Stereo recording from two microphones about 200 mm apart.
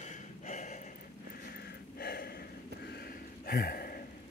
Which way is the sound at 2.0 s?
50° left (ahead or behind).